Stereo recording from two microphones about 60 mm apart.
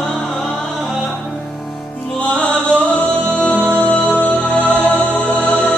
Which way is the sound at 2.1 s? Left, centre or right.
Centre.